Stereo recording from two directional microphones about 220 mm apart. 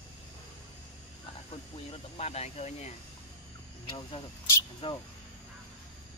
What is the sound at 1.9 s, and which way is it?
Speech, 30° left (ahead or behind).